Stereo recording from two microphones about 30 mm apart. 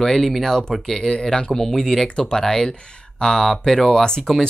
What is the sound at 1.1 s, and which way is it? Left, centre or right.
Speech, left.